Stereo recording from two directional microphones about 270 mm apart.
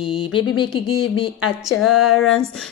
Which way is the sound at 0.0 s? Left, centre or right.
Centre.